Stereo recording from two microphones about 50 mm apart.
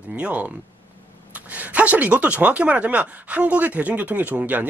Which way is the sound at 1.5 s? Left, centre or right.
Right.